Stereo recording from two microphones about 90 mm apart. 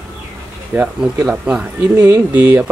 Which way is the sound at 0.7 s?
15° right (ahead or behind).